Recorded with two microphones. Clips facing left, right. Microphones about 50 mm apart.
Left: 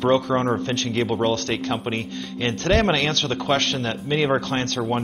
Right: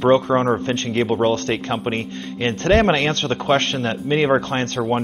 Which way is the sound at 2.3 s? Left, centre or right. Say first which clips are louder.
Right 4 dB; right.